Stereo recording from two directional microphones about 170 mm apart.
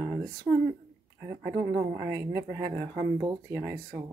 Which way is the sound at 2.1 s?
15° right (ahead or behind).